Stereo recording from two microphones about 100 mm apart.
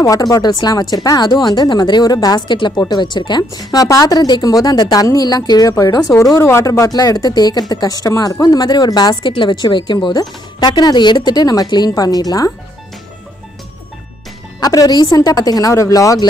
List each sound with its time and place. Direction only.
0.0 s speech: 35° left (ahead or behind)
9.1 s speech: 55° left (ahead or behind); by 12.4 s 40° left (ahead or behind)
14.6 s speech: 40° left (ahead or behind)